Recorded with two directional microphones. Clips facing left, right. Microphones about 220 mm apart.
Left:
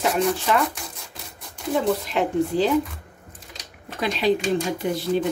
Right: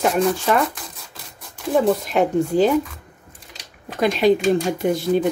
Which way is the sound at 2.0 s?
50° right (ahead or behind).